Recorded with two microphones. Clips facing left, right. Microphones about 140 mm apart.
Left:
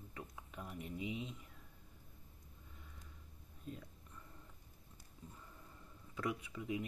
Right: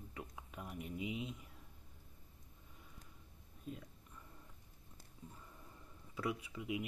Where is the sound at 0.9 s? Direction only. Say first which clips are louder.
Right 1 dB; 35° left (ahead or behind).